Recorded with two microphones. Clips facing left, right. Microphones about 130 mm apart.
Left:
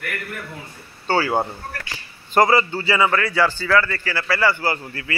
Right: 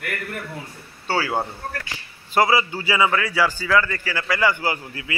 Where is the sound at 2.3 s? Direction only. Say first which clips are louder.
Left 2 dB; 10° right (ahead or behind).